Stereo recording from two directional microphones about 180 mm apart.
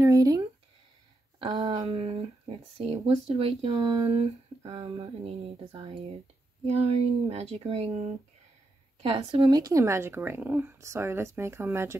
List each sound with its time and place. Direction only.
0.0 s a sound: 20° right (ahead or behind)
1.4 s speech: 25° right (ahead or behind)
1.8 s speech: 35° right (ahead or behind)
3.7 s speech: 20° right (ahead or behind)
4.1 s speech: 35° right (ahead or behind)
9.0 s a woman's voice: 25° right (ahead or behind)